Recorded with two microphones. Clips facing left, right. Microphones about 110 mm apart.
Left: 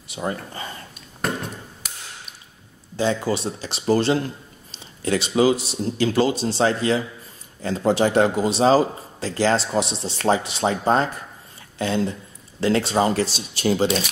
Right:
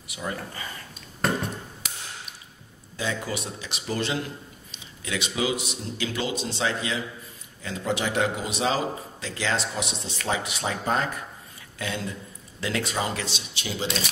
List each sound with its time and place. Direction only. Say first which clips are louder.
0.1 s speech: left 6 dB; 35° left (ahead or behind)
0.6 s a sound: left 4 dB; 30° left (ahead or behind)
3.0 s speech: left 8 dB; 30° left (ahead or behind)